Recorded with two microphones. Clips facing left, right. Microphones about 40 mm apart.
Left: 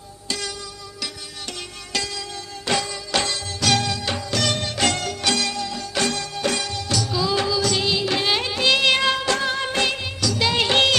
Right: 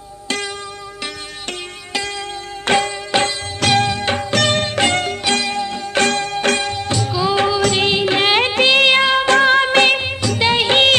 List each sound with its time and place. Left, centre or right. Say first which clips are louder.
2.6 s music: right 7 dB; right
3.1 s music of bollywood: right 6 dB; right
4.6 s music: right 6 dB; right
6.7 s music of bollywood: right 4 dB; right
7.1 s music: right 6 dB; right
7.4 s music: right 6 dB; right
8.8 s music: right 6 dB; right
9.3 s music of bollywood: right 10 dB; right
10.2 s music of bollywood: right 3 dB; right